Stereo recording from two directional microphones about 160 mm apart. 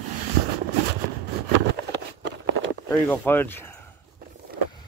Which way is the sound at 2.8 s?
20° left (ahead or behind).